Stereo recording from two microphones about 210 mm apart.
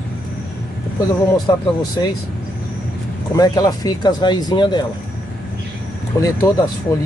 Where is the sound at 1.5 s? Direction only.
15° left (ahead or behind).